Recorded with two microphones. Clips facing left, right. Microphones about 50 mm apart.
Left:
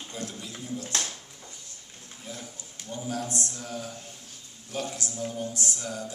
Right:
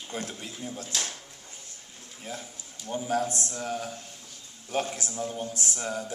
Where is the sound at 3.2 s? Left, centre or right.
Left.